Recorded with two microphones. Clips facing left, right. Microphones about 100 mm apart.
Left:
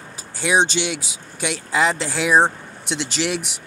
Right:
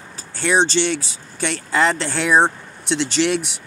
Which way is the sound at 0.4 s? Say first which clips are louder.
Right 2 dB; 10° left (ahead or behind).